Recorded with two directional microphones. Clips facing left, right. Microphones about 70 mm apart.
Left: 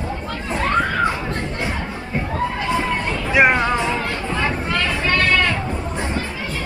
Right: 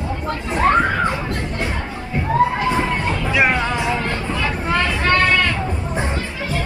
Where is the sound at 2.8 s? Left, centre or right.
Centre.